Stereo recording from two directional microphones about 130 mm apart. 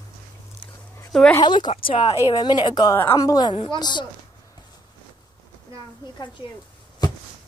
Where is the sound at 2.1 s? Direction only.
30° left (ahead or behind).